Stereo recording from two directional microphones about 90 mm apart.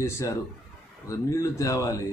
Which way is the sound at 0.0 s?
30° left (ahead or behind).